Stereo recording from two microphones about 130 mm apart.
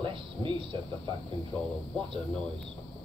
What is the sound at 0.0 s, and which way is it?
Speech, 40° right (ahead or behind).